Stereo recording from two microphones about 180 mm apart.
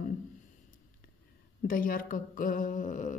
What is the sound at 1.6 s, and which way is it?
A woman's voice, 50° left (ahead or behind).